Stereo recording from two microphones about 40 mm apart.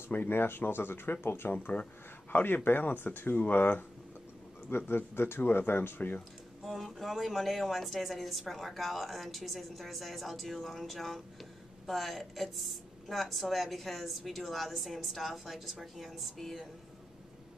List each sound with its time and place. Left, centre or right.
0.1 s speech: left
1.5 s speech: left
2.3 s speech: left
3.0 s speech: left
3.3 s speech: left
4.6 s speech: left
5.9 s speech: left
6.6 s speech: centre